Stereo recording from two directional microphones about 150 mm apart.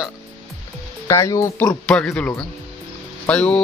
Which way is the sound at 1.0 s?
20° left (ahead or behind).